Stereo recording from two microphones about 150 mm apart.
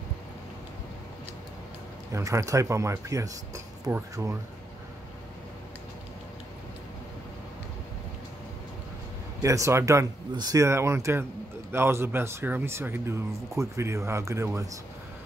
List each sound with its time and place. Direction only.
2.1 s speech: 20° right (ahead or behind)
9.4 s speech: 20° right (ahead or behind)